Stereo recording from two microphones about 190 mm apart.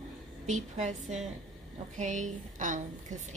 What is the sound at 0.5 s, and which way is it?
Speech, 40° right (ahead or behind).